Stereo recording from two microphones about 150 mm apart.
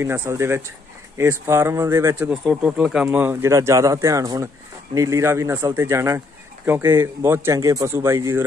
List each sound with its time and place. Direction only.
0.0 s speech: 20° right (ahead or behind)
2.4 s speech: 5° right (ahead or behind)